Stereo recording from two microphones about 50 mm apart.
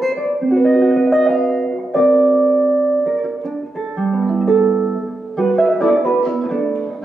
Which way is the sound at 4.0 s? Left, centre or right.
Centre.